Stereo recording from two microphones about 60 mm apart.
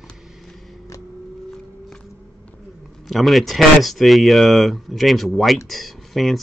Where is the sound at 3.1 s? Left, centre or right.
Centre.